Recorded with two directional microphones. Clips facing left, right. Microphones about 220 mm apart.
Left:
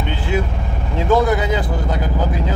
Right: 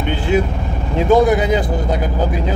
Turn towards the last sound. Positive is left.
turn(degrees=-15)  # may be behind; listen again after turning